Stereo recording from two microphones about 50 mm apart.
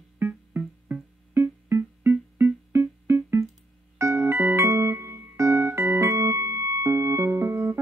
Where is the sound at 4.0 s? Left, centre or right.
Right.